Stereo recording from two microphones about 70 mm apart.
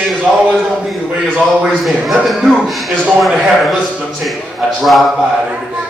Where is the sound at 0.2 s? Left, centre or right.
Centre.